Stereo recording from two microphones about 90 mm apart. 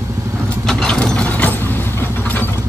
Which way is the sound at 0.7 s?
5° left (ahead or behind).